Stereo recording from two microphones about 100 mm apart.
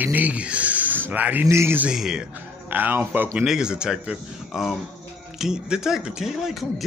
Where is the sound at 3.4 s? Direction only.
10° right (ahead or behind).